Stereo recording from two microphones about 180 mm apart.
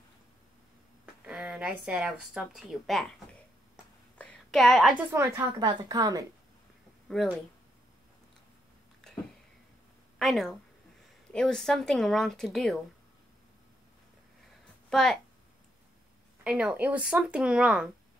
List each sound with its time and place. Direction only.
1.2 s a woman's voice: 5° right (ahead or behind)
4.2 s a sound: 5° left (ahead or behind)
5.1 s a woman's voice: 20° right (ahead or behind)
10.1 s a woman's voice: centre (ahead or behind)
14.9 s speech: 5° left (ahead or behind)
16.4 s a woman's voice: 5° right (ahead or behind)